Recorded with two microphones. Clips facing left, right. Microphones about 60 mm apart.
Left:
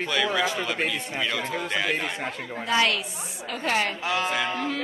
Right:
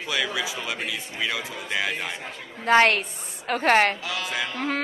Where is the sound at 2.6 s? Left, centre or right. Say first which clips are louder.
Right 6 dB; right.